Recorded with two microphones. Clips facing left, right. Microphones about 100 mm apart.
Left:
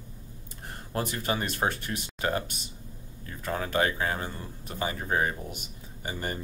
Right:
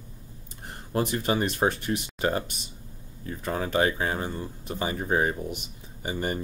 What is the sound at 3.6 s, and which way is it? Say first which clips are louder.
Speech: right 2 dB; 20° right (ahead or behind).